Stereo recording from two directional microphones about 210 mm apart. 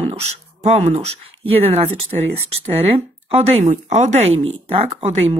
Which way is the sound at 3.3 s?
30° right (ahead or behind).